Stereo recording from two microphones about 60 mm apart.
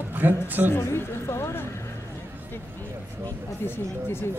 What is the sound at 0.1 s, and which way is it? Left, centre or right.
Speech, right.